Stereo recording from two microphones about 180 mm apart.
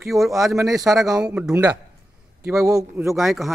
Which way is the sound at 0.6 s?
20° right (ahead or behind).